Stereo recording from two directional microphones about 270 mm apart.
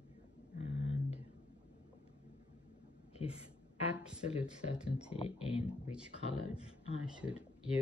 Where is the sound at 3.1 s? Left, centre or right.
Left.